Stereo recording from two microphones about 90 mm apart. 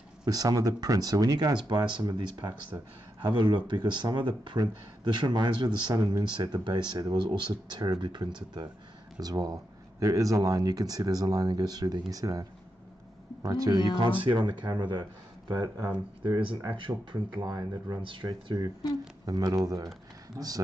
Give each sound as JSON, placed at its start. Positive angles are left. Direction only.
{"t": 0.2, "sound": "speech", "side_deg": -45}
{"t": 9.2, "sound": "speech", "side_deg": -45}
{"t": 13.9, "sound": "speech", "side_deg": -60}
{"t": 16.7, "sound": "speech", "side_deg": -70}
{"t": 17.3, "sound": "speech", "side_deg": -45}
{"t": 18.0, "sound": "speech", "side_deg": -60}
{"t": 19.2, "sound": "speech", "side_deg": -45}